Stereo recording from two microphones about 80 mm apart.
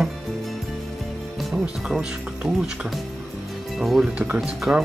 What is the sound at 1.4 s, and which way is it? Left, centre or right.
Music, centre.